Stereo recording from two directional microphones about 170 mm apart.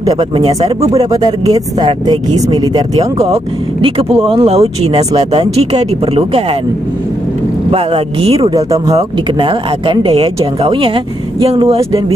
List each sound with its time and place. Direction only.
0.0 s speech: 25° right (ahead or behind)
3.0 s speech: 35° right (ahead or behind)
7.7 s speech: 35° right (ahead or behind)
8.5 s speech: 20° right (ahead or behind)